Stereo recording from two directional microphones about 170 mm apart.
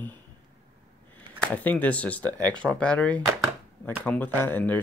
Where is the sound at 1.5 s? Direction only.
10° left (ahead or behind).